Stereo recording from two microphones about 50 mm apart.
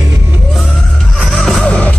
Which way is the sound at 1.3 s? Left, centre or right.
Centre.